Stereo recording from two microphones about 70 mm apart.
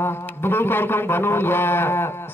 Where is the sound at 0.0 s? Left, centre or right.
Left.